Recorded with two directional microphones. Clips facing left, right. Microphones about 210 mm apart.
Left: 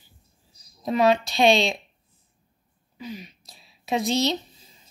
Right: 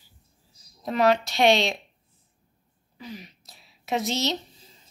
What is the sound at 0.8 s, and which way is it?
Speech, 10° left (ahead or behind).